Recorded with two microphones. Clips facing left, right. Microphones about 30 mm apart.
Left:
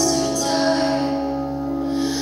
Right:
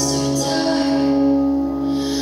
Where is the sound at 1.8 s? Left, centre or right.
Centre.